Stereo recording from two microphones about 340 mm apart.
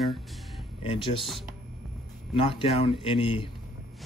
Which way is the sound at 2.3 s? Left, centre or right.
Centre.